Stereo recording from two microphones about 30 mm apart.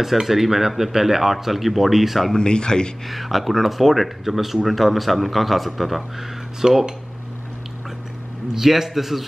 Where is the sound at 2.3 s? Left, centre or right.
Left.